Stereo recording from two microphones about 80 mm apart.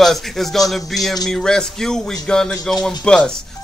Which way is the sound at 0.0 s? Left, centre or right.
Centre.